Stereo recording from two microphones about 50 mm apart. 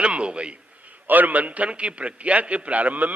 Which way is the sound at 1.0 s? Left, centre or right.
Right.